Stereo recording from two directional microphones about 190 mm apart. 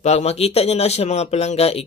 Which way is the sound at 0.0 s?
35° left (ahead or behind).